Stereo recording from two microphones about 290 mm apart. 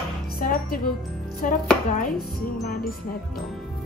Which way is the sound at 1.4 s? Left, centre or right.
Left.